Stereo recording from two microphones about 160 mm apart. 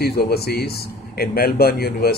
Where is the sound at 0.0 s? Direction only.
80° left.